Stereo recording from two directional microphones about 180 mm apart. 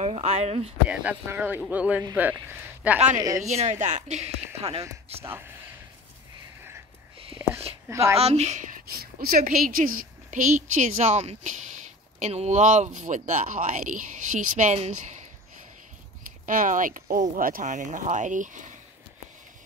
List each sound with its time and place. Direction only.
0.0 s speech: 35° right (ahead or behind)
0.8 s speech: 10° right (ahead or behind)
3.2 s a woman's voice: 20° right (ahead or behind)
3.4 s speech: 40° right (ahead or behind)
5.2 s speech: 15° right (ahead or behind)
7.4 s a sound: 15° right (ahead or behind)
7.9 s speech: 15° right (ahead or behind)
8.2 s a woman's voice: 35° right (ahead or behind)
16.4 s a woman's voice: 45° right (ahead or behind)